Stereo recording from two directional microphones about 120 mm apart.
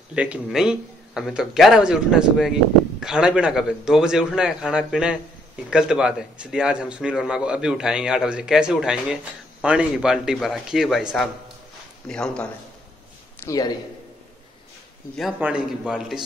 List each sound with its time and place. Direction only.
0.1 s a man's voice: 10° right (ahead or behind); by 12.4 s 5° left (ahead or behind)
13.5 s a man's voice: 30° left (ahead or behind)
15.3 s a man's voice: 10° right (ahead or behind)